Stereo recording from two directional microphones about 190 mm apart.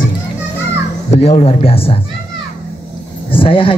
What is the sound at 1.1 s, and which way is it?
Speech, 30° left (ahead or behind).